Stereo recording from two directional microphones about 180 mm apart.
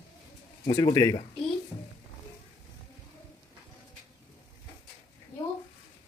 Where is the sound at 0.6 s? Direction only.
20° left (ahead or behind).